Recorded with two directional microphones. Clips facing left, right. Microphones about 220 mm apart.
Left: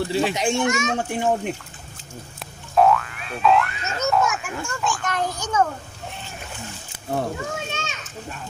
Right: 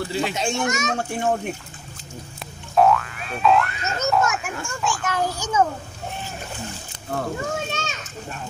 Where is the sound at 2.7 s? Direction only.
Centre (ahead or behind).